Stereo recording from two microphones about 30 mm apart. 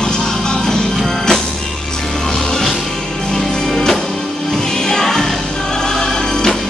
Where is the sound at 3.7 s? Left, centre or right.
Centre.